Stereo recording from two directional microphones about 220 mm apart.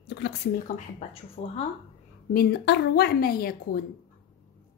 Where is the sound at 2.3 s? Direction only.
50° left (ahead or behind).